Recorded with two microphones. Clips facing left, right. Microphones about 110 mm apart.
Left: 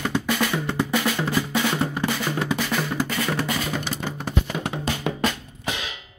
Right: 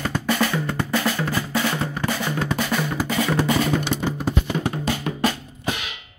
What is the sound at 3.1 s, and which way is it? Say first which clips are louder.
Music: right 4 dB; 25° right (ahead or behind).